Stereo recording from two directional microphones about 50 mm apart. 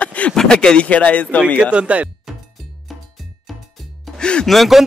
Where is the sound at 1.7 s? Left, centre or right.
Right.